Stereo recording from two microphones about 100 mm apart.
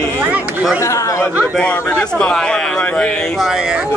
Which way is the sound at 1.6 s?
15° left (ahead or behind).